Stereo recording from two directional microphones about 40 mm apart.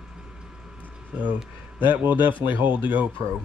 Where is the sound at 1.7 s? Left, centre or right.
Right.